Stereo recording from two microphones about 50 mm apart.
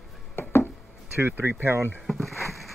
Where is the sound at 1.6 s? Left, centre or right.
Right.